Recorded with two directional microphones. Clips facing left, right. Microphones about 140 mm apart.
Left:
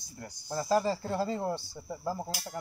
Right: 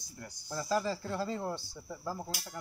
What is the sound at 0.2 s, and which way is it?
Music, 30° left (ahead or behind).